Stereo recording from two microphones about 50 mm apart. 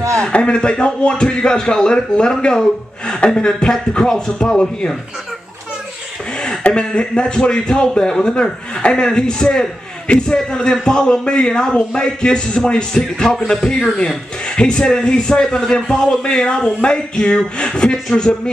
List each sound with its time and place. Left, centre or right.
0.2 s a man's voice: left
6.6 s a man's voice: centre